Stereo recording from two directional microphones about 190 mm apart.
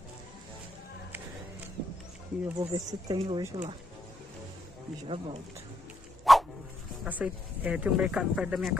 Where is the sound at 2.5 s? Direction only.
20° right (ahead or behind).